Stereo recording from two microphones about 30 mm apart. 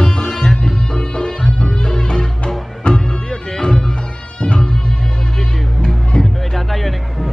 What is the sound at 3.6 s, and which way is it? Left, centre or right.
Music, left.